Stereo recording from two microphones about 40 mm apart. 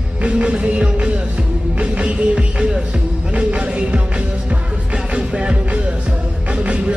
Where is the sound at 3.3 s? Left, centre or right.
Right.